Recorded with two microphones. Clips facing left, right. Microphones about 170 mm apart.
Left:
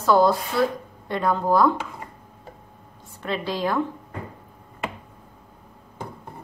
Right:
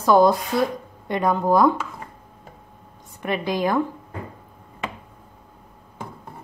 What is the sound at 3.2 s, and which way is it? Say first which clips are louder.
Speech: right 3 dB; 15° right (ahead or behind).